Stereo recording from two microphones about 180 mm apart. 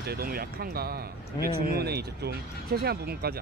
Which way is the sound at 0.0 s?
55° right (ahead or behind).